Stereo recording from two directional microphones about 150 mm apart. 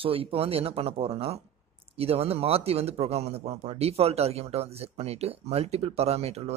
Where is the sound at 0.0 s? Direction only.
40° right (ahead or behind).